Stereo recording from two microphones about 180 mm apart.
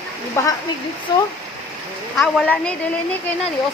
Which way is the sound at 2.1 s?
5° left (ahead or behind).